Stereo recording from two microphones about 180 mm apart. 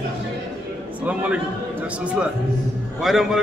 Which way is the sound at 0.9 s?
10° right (ahead or behind).